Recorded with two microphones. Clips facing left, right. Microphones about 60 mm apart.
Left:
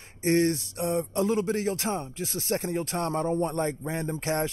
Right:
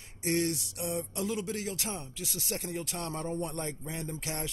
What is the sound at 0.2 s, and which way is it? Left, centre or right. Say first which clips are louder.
Speech: left 7 dB; left.